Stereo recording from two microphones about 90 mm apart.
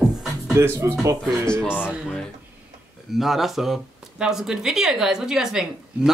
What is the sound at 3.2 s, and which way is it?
Speech, centre (ahead or behind).